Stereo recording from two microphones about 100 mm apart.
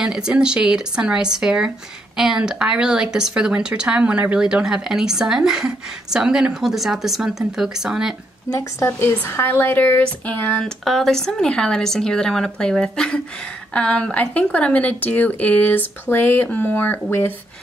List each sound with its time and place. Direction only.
0.0 s speech: 10° right (ahead or behind)
8.5 s a woman's voice: 30° left (ahead or behind)
10.6 s speech: 5° left (ahead or behind); by 17.3 s 20° left (ahead or behind)